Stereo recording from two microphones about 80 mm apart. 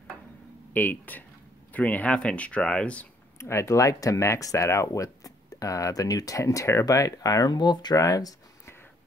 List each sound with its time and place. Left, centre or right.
0.7 s speech: left
3.3 s speech: left
6.9 s speech: left
8.0 s speech: left